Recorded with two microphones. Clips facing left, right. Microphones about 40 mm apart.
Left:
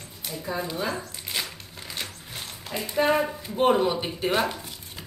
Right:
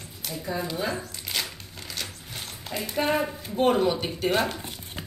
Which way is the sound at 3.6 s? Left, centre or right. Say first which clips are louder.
Left 1 dB; centre.